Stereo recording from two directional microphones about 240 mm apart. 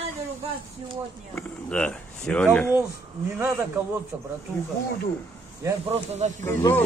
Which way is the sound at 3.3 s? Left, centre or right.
Centre.